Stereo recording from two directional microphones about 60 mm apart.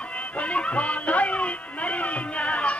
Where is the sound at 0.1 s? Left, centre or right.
Left.